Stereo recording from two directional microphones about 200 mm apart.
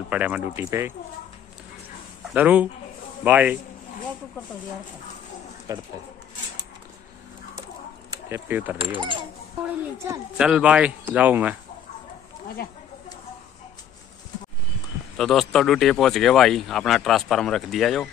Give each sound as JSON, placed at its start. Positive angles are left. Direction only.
{"t": 0.1, "sound": "speech", "side_deg": -5}
{"t": 2.3, "sound": "speech", "side_deg": -10}
{"t": 5.7, "sound": "speech", "side_deg": -20}
{"t": 8.1, "sound": "speech", "side_deg": -10}
{"t": 8.7, "sound": "speech", "side_deg": -25}
{"t": 10.3, "sound": "speech", "side_deg": -5}
{"t": 12.6, "sound": "speech", "side_deg": 50}
{"t": 15.1, "sound": "speech", "side_deg": 0}